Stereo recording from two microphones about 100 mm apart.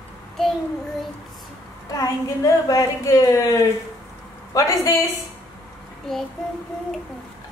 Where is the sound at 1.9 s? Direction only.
35° left (ahead or behind).